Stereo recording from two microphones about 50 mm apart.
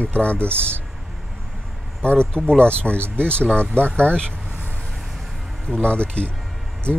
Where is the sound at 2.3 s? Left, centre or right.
Centre.